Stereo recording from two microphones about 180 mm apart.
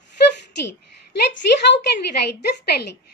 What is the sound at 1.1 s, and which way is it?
Speech, 75° left (ahead or behind).